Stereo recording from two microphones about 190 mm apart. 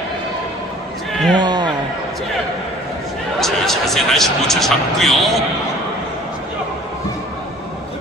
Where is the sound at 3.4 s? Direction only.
Centre (ahead or behind).